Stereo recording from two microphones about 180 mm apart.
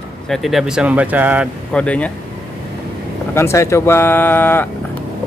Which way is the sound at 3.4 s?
15° left (ahead or behind).